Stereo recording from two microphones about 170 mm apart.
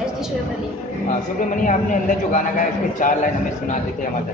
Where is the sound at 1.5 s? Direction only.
50° left (ahead or behind).